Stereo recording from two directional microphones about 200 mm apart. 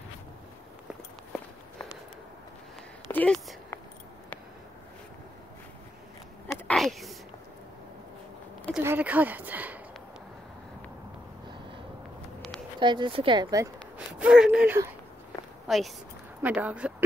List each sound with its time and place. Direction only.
3.1 s speech: 5° left (ahead or behind)
6.4 s a sound: centre (ahead or behind)
8.7 s speech: 10° right (ahead or behind)
12.8 s speech: 25° right (ahead or behind)
13.9 s speech: 5° right (ahead or behind)